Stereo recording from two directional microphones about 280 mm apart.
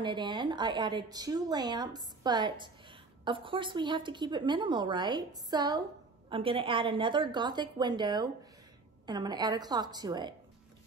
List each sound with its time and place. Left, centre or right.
0.0 s a woman's voice: centre